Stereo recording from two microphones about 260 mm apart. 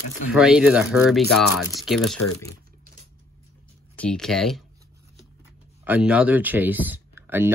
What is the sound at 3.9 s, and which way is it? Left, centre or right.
Speech, centre.